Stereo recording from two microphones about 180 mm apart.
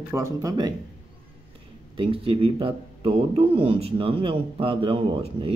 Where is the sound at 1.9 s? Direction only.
30° right (ahead or behind).